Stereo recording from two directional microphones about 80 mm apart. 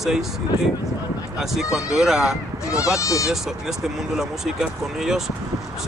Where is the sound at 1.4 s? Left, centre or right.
Centre.